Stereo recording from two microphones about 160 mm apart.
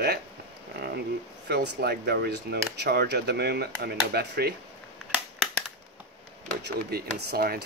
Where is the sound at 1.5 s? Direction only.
90° right.